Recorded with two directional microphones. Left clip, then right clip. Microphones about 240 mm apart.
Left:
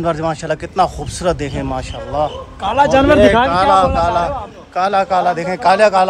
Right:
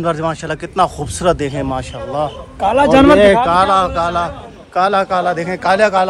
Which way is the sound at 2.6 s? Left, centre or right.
Right.